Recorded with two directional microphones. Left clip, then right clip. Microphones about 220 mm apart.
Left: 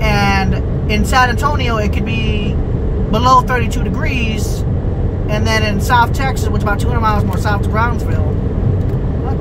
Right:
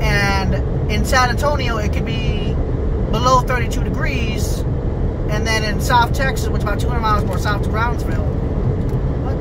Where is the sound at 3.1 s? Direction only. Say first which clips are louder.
Left 5 dB; 20° left (ahead or behind).